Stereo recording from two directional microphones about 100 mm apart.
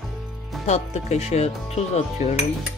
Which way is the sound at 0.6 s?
90° left.